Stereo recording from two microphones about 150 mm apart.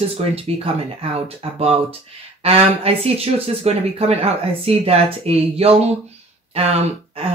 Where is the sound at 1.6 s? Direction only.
40° right (ahead or behind).